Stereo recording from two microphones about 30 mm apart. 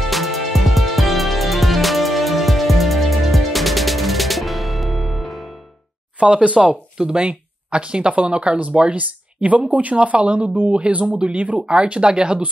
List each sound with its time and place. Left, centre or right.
0.1 s music: centre
6.1 s speech: right
8.5 s speech: right
11.6 s speech: right